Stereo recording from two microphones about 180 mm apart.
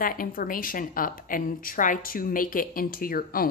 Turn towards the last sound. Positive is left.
turn(degrees=55)  # may be behind; listen again after turning